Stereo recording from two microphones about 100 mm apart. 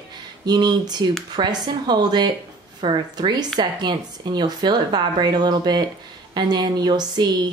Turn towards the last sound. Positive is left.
turn(degrees=-45)  # may be behind; listen again after turning